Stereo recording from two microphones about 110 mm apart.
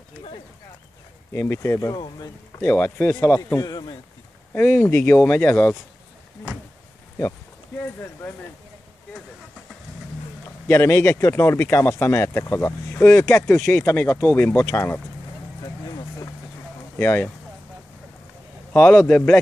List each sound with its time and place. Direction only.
1.3 s speech: 20° left (ahead or behind)
2.0 s a man's voice: 40° left (ahead or behind)
2.6 s a man's voice: 20° left (ahead or behind); by 4.0 s 40° left (ahead or behind)
4.6 s speech: 20° left (ahead or behind)
7.8 s speech: 20° left (ahead or behind)
10.7 s speech: 25° left (ahead or behind)
17.0 s speech: 20° left (ahead or behind)
18.7 s speech: 20° left (ahead or behind)